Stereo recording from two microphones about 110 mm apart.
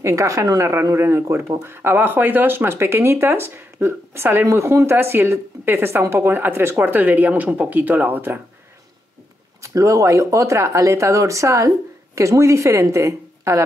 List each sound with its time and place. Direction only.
0.0 s speech: 30° right (ahead or behind)
9.6 s speech: 30° right (ahead or behind)